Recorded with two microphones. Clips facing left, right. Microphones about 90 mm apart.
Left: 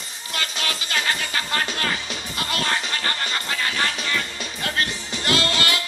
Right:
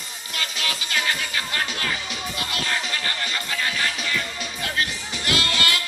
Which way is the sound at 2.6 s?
50° left (ahead or behind).